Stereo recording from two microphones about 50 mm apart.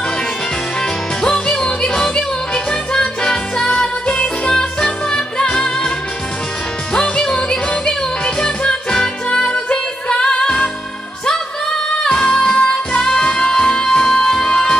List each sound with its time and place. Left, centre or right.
1.2 s music: centre
12.0 s music: centre